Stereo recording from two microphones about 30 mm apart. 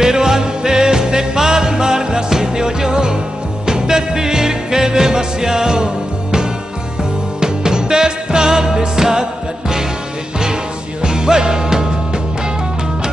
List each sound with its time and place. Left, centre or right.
0.0 s music: centre
7.3 s music: right
11.0 s music: right